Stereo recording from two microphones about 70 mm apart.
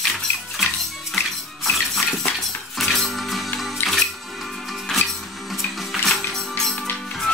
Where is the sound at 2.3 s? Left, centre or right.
Centre.